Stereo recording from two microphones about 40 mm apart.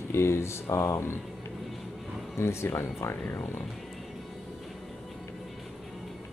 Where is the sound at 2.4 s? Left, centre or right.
Left.